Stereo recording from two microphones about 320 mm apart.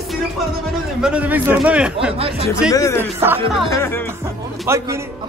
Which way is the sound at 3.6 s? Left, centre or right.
Centre.